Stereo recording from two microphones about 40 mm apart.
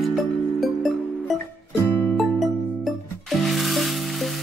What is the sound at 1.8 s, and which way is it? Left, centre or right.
Music, left.